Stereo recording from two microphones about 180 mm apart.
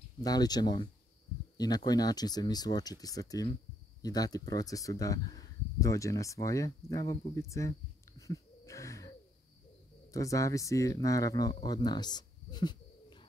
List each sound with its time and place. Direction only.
0.2 s speech: 20° left (ahead or behind)
1.9 s speech: 20° left (ahead or behind)
8.2 s a sound: 20° left (ahead or behind)
10.1 s speech: 20° left (ahead or behind)